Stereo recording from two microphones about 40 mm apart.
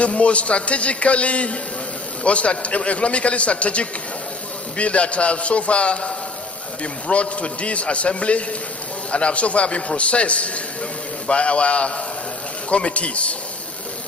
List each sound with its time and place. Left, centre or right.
0.0 s a man's voice: left